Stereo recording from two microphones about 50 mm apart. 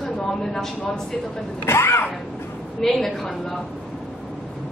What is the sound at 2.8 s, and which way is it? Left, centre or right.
Speech, centre.